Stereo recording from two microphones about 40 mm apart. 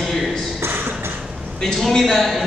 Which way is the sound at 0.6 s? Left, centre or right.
Right.